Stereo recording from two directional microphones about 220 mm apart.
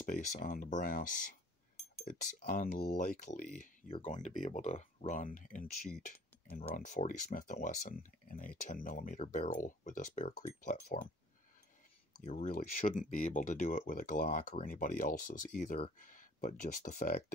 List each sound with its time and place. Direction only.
0.0 s speech: 40° left (ahead or behind)
5.9 s a sound: 10° left (ahead or behind)
6.7 s speech: 35° left (ahead or behind)
12.3 s speech: 35° left (ahead or behind)